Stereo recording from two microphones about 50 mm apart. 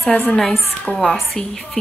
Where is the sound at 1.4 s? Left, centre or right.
Centre.